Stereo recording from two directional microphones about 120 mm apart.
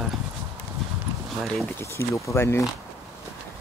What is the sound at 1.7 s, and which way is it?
Speech, 20° left (ahead or behind).